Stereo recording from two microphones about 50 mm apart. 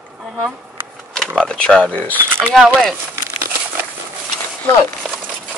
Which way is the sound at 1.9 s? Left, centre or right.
Right.